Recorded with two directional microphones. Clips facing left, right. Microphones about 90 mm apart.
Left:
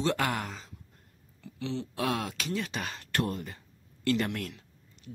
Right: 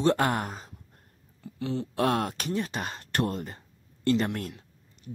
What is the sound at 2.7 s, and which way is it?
Speech, 35° right (ahead or behind).